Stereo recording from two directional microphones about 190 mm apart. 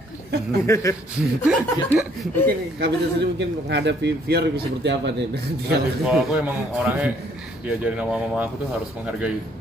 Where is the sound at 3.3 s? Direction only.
65° right (ahead or behind).